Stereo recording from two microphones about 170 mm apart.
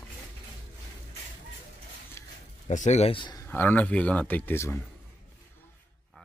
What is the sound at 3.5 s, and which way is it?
Speech, 10° left (ahead or behind).